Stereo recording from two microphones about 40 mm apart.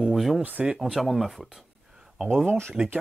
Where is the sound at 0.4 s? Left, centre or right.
Right.